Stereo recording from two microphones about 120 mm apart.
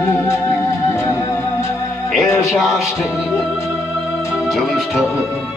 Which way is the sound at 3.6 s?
25° left (ahead or behind).